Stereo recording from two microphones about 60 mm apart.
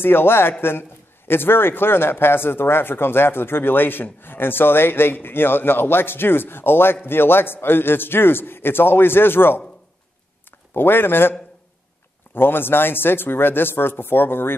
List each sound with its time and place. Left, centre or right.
0.0 s a man's voice: left
10.7 s a man's voice: left
12.4 s a man's voice: left